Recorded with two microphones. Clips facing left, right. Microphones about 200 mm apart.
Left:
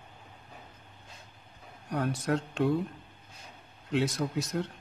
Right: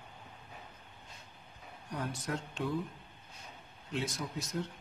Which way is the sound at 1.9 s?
65° left (ahead or behind).